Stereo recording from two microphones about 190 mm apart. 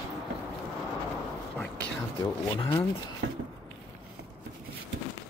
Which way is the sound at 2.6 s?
20° left (ahead or behind).